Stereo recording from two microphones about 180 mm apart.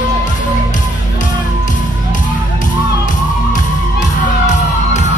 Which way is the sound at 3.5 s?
45° left (ahead or behind).